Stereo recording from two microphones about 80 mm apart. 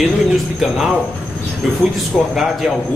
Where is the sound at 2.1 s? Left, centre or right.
Centre.